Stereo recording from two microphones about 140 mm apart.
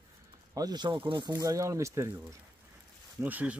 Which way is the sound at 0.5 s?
30° right (ahead or behind).